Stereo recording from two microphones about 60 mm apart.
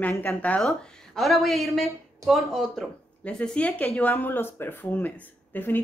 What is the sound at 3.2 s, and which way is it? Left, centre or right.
Speech, centre.